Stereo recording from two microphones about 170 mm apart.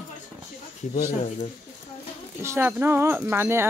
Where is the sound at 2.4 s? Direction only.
15° right (ahead or behind).